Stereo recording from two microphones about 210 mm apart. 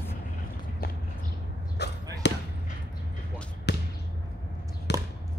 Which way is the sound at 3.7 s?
55° left (ahead or behind).